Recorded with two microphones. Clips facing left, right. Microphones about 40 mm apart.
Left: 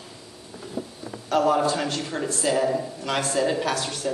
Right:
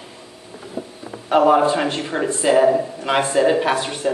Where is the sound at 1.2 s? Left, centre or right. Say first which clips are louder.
Right 7 dB; right.